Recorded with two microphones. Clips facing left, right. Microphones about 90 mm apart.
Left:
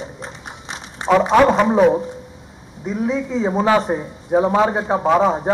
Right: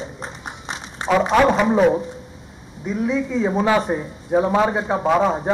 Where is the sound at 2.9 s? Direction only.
30° left (ahead or behind).